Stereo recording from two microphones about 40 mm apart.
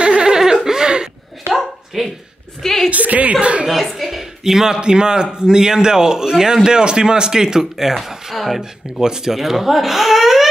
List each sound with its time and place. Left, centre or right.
0.0 s a sound: right
1.5 s dog: centre
2.6 s a sound: centre
2.9 s speech: right
3.6 s speech: centre
4.7 s a man's voice: right; by 8.6 s centre
9.0 s speech: centre